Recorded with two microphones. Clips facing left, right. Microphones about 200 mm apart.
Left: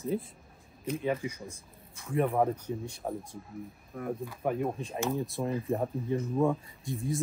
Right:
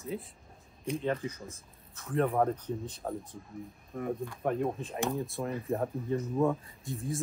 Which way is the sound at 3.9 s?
Centre (ahead or behind).